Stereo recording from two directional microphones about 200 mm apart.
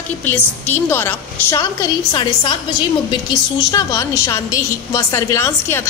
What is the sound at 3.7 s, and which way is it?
A woman's voice, 15° left (ahead or behind).